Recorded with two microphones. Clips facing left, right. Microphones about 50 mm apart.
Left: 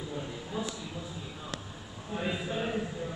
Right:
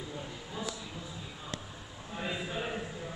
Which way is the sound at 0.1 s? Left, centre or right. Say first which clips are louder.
Left 4 dB; centre.